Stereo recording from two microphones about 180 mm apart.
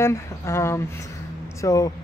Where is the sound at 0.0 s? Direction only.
15° left (ahead or behind).